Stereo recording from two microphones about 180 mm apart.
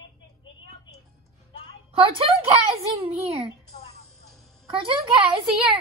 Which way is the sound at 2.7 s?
35° right (ahead or behind).